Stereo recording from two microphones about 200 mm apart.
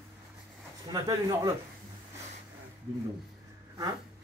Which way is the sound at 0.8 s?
20° right (ahead or behind).